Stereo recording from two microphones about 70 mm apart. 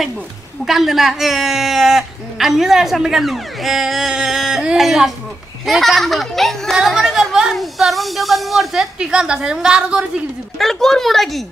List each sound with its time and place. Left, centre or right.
0.7 s a man's voice: centre
10.6 s a man's voice: centre